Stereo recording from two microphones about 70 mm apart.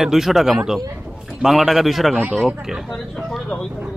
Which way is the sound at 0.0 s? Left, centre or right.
Centre.